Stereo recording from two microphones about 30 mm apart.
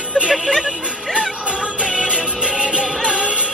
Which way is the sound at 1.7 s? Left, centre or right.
Right.